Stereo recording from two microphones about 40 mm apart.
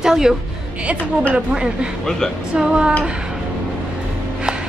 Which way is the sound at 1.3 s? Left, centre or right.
Right.